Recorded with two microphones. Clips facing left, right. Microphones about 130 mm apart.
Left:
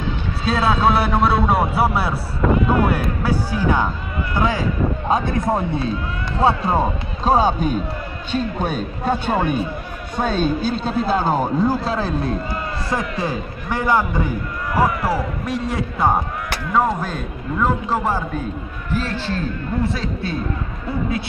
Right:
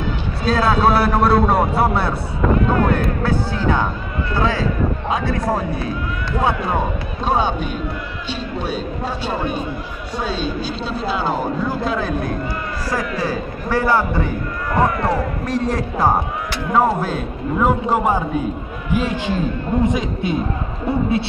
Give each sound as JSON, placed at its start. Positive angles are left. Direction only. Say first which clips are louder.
{"t": 0.5, "sound": "a man's voice", "louder": "right 2 dB", "side_deg": 0}